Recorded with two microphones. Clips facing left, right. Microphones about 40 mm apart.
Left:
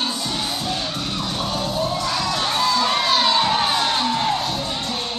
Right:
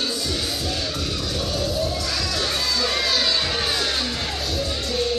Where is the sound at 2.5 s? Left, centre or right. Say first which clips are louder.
Left 7 dB; centre.